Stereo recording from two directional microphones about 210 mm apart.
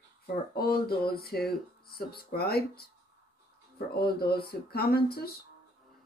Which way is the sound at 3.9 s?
45° left (ahead or behind).